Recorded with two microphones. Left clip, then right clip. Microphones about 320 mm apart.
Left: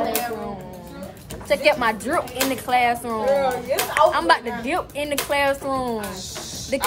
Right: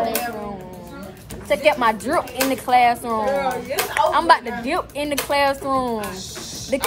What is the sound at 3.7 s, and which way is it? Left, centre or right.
Speech, left.